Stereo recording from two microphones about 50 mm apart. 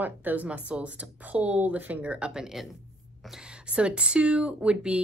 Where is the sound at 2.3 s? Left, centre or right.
Centre.